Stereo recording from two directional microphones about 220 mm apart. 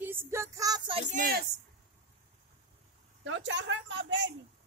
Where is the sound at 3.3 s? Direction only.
55° right (ahead or behind).